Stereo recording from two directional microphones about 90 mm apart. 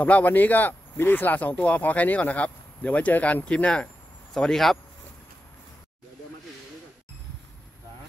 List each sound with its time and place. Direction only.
0.0 s speech: 20° left (ahead or behind)